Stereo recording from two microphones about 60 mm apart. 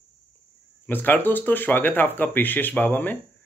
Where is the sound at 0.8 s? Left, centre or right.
Left.